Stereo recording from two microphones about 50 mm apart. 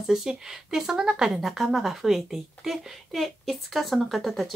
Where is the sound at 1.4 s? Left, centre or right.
Centre.